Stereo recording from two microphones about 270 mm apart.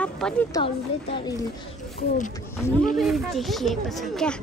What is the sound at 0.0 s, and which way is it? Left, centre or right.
A woman's voice, centre.